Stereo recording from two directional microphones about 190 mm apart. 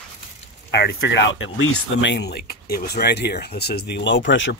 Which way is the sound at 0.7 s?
60° left (ahead or behind).